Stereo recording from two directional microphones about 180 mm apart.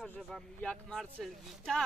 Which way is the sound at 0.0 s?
5° left (ahead or behind).